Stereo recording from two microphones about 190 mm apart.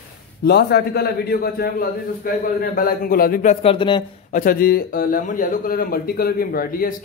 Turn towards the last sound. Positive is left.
turn(degrees=50)  # may be behind; listen again after turning